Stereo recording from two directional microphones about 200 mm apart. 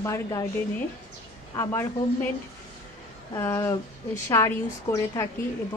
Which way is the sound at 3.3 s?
15° left (ahead or behind).